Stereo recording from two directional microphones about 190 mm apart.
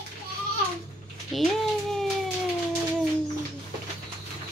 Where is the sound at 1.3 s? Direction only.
Centre (ahead or behind).